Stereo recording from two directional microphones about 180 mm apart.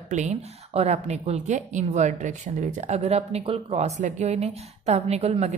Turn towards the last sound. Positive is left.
turn(degrees=-35)  # may be behind; listen again after turning